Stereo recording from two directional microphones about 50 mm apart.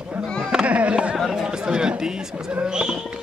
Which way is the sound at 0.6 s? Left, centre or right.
Right.